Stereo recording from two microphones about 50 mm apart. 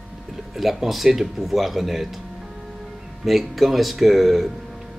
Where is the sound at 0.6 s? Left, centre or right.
Centre.